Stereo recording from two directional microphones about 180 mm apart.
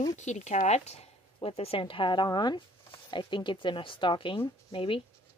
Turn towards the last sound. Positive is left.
turn(degrees=30)  # may be behind; listen again after turning